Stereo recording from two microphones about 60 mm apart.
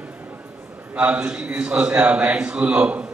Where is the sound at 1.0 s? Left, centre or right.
Right.